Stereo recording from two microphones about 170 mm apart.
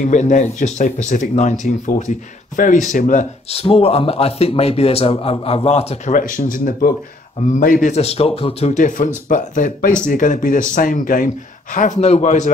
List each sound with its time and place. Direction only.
0.0 s speech: 45° left (ahead or behind)